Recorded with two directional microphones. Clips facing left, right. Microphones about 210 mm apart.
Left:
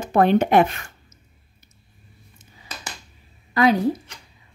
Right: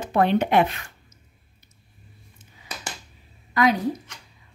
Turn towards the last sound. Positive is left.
turn(degrees=30)  # may be behind; listen again after turning